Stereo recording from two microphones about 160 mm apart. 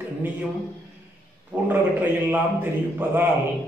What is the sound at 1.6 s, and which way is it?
Speech, 10° right (ahead or behind).